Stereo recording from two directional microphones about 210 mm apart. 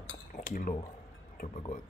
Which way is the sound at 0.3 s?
40° left (ahead or behind).